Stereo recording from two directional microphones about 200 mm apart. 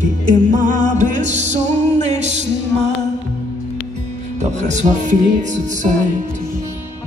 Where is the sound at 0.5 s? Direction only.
40° right (ahead or behind).